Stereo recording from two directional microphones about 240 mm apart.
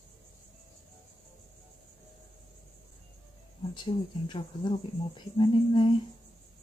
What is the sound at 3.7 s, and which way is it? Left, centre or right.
Speech, centre.